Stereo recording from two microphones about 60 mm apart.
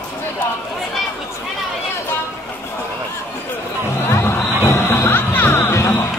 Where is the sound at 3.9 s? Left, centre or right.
Left.